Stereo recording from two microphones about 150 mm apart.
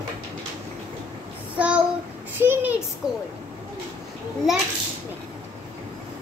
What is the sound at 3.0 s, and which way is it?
Speech, 5° right (ahead or behind).